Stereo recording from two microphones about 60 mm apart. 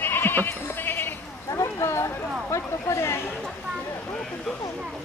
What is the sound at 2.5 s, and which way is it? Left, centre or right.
Speech, left.